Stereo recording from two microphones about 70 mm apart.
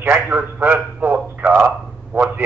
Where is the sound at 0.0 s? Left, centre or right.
Right.